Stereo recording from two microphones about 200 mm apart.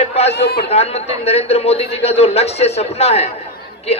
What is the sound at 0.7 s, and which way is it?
A man's voice, 30° left (ahead or behind).